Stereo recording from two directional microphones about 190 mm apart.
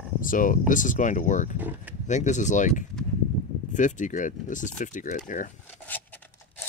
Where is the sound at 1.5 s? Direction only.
10° right (ahead or behind).